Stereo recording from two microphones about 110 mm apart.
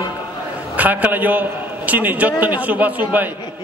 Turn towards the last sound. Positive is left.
turn(degrees=-15)  # may be behind; listen again after turning